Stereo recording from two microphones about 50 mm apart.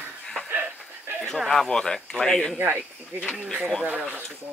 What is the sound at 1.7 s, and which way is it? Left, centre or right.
Speech, centre.